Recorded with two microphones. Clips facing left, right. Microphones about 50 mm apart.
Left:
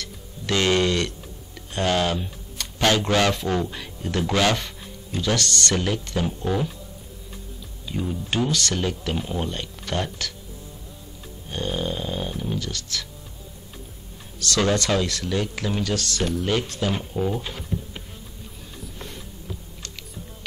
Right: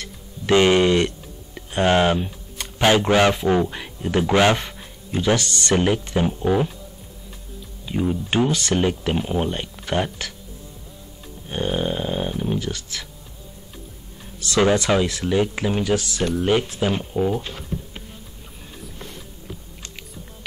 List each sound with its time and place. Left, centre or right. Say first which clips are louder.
0.0 s speech: right 3 dB; right
7.8 s speech: right 6 dB; right
11.4 s snoring: right 4 dB; right
14.4 s speech: right 4 dB; centre